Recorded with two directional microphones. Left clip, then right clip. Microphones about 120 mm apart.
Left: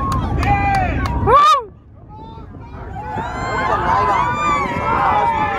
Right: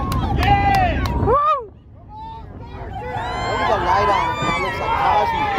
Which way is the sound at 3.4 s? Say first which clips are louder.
Left 1 dB; 25° right (ahead or behind).